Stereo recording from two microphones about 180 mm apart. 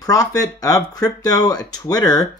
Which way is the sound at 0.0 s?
20° left (ahead or behind).